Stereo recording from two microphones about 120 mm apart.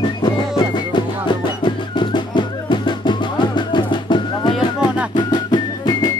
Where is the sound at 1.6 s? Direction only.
40° left (ahead or behind).